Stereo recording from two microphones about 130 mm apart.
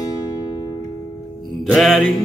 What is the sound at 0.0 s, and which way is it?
Music, 30° left (ahead or behind).